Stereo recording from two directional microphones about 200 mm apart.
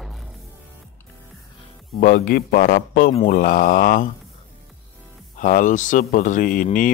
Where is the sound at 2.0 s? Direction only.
45° left (ahead or behind).